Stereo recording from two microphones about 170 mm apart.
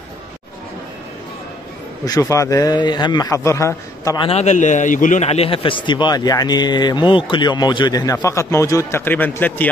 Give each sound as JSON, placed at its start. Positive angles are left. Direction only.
{"t": 2.0, "sound": "a man's voice", "side_deg": 20}
{"t": 4.3, "sound": "a man's voice", "side_deg": 40}